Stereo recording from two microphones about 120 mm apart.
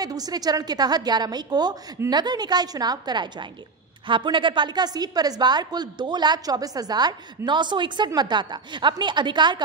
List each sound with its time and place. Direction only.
0.0 s a woman's voice: 30° right (ahead or behind)